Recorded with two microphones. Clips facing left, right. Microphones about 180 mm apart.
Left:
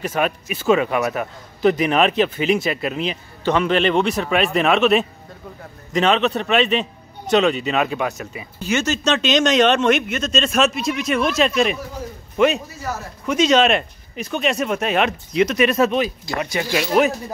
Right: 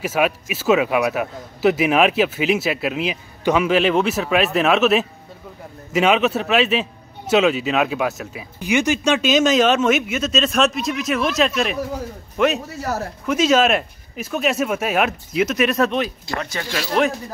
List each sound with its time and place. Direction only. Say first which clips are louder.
0.0 s a man's voice: right 2 dB; 5° right (ahead or behind)
8.5 s a man's voice: right 2 dB; 15° right (ahead or behind)
12.7 s a man's voice: right 3 dB; 65° right (ahead or behind)
13.2 s a man's voice: left 1 dB; 5° right (ahead or behind)
16.3 s speech: left 4 dB; 15° left (ahead or behind)